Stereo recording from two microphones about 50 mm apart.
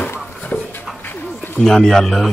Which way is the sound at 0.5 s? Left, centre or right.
Left.